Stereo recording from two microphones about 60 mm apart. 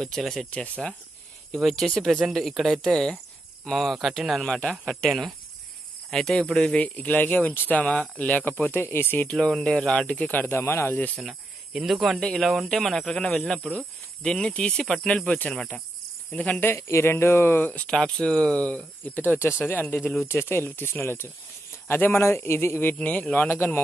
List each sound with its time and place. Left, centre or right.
0.0 s speech: centre
0.5 s speech: left
1.5 s speech: centre
4.4 s speech: centre; by 7.8 s left
7.8 s speech: centre
8.3 s speech: left
9.4 s speech: centre
10.5 s speech: left
11.2 s speech: centre
13.2 s speech: centre
16.6 s speech: left
17.8 s speech: centre
19.0 s speech: left
22.9 s speech: left